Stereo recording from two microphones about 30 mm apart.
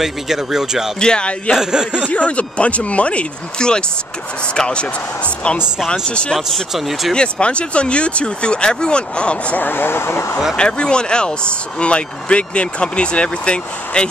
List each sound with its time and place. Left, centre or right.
0.0 s speech: centre
0.9 s speech: left
1.6 s speech: right
2.0 s speech: left
3.5 s speech: left
5.9 s speech: left
6.7 s speech: centre
7.2 s speech: left
10.5 s speech: left